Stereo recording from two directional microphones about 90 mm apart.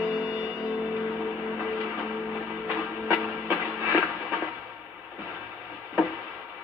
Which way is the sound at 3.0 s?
25° right (ahead or behind).